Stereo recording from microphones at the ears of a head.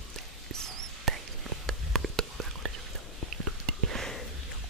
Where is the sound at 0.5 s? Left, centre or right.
Right.